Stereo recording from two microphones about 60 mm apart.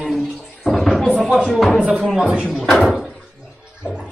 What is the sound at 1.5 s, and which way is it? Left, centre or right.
Speech, centre.